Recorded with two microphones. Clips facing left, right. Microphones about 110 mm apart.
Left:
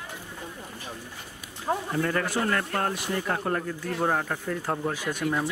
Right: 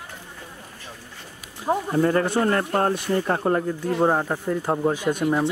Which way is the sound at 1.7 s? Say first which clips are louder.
Right 6 dB; 25° right (ahead or behind).